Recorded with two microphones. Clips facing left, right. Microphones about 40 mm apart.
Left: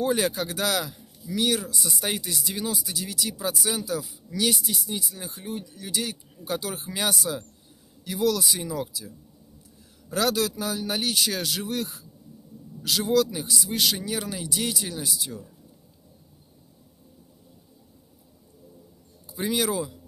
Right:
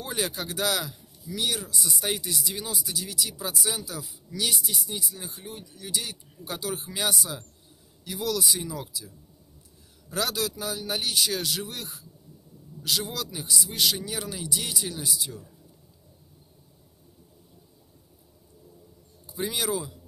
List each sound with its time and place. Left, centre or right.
0.0 s speech: left
0.3 s speech: left
8.0 s speech: left
10.1 s speech: left